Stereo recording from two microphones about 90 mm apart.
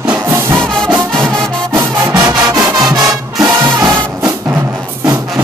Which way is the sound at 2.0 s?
45° right (ahead or behind).